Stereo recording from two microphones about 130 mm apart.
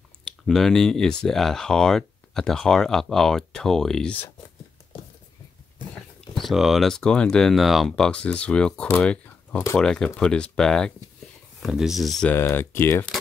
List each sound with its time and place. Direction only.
0.5 s speech: centre (ahead or behind)
6.3 s speech: centre (ahead or behind)
12.3 s speech: 15° left (ahead or behind)